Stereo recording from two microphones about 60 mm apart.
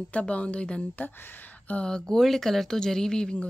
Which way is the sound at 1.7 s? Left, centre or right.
Centre.